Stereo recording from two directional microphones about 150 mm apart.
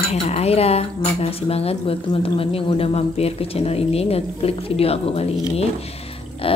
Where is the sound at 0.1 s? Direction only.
45° left (ahead or behind).